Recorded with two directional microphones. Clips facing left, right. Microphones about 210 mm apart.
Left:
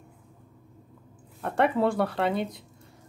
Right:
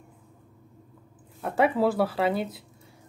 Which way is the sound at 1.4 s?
Centre (ahead or behind).